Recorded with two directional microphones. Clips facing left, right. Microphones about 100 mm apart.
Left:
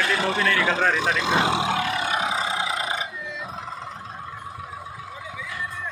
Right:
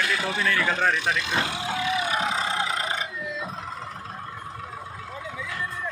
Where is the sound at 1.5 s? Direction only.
80° left.